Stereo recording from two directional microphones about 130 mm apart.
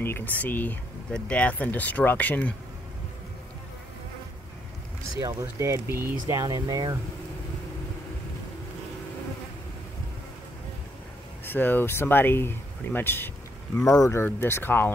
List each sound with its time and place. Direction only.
0.0 s speech: 15° left (ahead or behind)
5.1 s speech: 25° right (ahead or behind)
11.4 s speech: 15° left (ahead or behind)